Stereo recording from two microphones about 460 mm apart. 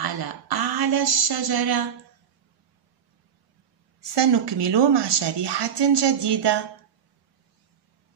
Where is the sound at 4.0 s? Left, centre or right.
Right.